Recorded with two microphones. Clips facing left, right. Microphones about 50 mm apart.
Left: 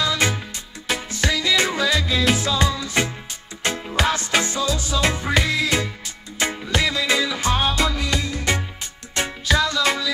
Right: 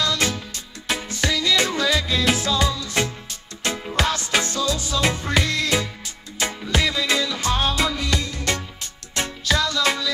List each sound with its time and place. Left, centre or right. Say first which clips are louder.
0.0 s music: left 1 dB; centre
2.7 s music: left 2 dB; centre
3.7 s music: left 1 dB; centre
7.7 s music: left 1 dB; centre